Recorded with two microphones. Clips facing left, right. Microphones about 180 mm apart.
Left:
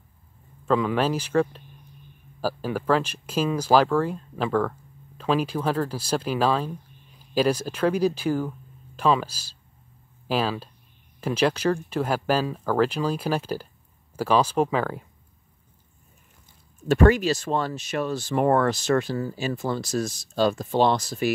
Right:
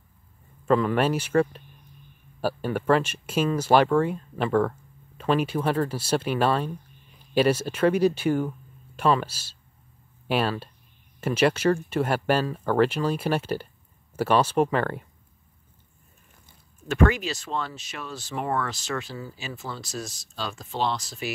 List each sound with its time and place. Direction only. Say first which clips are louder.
0.7 s speech: right 1 dB; 5° right (ahead or behind)
16.9 s speech: left 4 dB; 40° left (ahead or behind)